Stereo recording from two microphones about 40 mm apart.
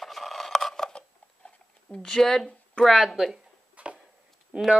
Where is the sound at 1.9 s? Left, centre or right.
Centre.